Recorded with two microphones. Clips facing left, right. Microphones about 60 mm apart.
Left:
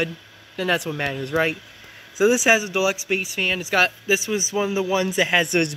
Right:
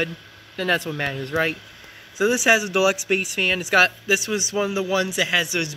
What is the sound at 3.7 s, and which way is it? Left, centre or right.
Speech, centre.